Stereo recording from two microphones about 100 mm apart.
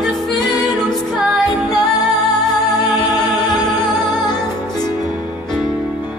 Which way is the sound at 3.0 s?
40° left (ahead or behind).